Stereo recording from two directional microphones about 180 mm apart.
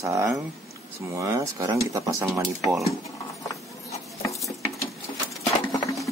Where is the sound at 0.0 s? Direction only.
15° right (ahead or behind).